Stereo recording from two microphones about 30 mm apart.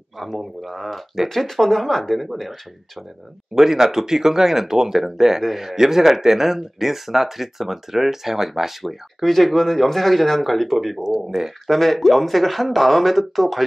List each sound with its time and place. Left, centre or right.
0.2 s speech: centre
3.5 s speech: centre
9.2 s speech: centre
11.0 s speech: centre
11.6 s speech: centre